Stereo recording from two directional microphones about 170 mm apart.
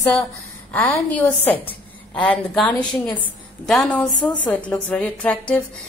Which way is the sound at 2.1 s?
10° left (ahead or behind).